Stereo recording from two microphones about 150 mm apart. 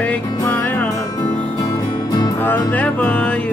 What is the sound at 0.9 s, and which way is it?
Music, 25° left (ahead or behind).